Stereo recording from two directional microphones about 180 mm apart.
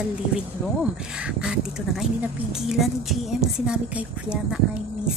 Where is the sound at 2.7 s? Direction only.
Centre (ahead or behind).